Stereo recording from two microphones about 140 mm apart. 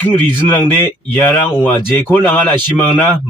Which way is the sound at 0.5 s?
15° left (ahead or behind).